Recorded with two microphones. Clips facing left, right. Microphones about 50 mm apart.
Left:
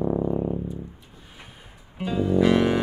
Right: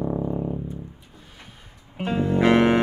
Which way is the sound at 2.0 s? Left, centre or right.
Right.